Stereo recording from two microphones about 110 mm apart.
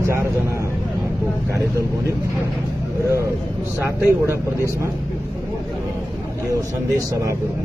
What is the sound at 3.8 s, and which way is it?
Speech, 25° right (ahead or behind).